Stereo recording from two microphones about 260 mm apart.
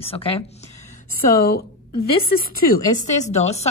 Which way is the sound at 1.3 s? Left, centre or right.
Left.